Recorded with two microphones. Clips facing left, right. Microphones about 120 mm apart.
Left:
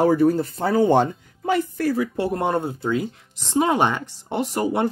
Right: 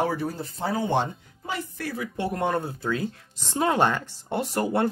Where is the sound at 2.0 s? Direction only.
35° left (ahead or behind); by 4.9 s 15° left (ahead or behind).